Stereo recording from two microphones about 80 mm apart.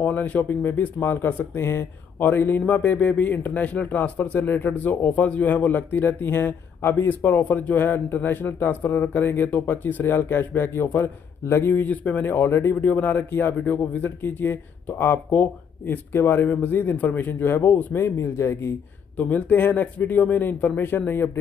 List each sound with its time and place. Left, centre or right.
0.0 s speech: centre
11.9 s speech: centre; by 18.7 s left
19.1 s speech: centre